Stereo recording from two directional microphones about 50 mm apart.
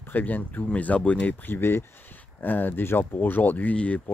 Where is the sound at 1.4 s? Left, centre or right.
Left.